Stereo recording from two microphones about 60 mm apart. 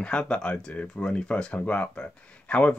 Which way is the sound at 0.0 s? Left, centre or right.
Centre.